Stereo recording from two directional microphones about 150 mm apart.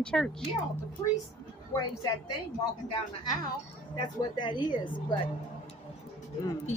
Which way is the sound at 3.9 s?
30° left (ahead or behind).